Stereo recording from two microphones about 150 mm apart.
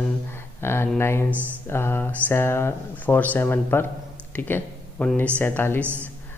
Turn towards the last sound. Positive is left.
turn(degrees=15)  # may be behind; listen again after turning